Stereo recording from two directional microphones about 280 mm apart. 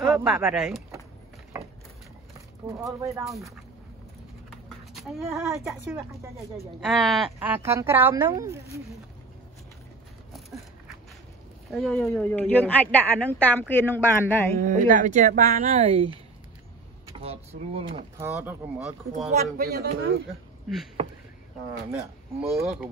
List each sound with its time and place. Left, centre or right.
0.0 s speech: centre
1.5 s a sound: centre
2.6 s speech: centre
4.5 s speech: centre
6.8 s speech: centre
11.7 s a woman's voice: centre
14.6 s speech: right
17.1 s drawer open or close: right
18.2 s speech: centre
19.3 s speech: right
21.9 s a woman's voice: centre